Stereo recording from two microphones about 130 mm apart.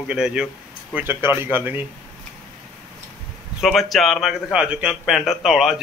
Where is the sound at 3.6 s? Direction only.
Centre (ahead or behind).